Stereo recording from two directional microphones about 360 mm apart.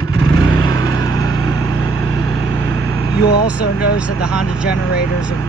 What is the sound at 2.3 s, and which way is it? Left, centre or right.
Vehicle, right.